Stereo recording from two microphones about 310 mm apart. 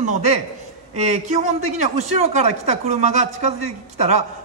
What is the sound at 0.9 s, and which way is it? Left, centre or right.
A man's voice, right.